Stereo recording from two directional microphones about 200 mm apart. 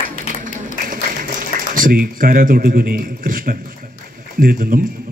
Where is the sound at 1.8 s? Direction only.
45° right (ahead or behind).